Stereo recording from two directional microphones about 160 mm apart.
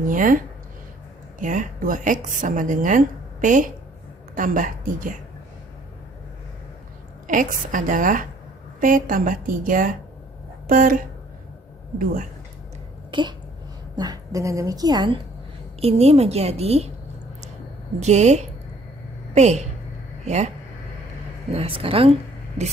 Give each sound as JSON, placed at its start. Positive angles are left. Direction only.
{"t": 0.0, "sound": "speech", "side_deg": -60}
{"t": 1.4, "sound": "speech", "side_deg": -55}
{"t": 7.2, "sound": "speech", "side_deg": -55}
{"t": 13.1, "sound": "a woman's voice", "side_deg": -30}
{"t": 15.8, "sound": "a woman's voice", "side_deg": -40}
{"t": 18.0, "sound": "a woman's voice", "side_deg": -45}
{"t": 21.5, "sound": "a woman's voice", "side_deg": -35}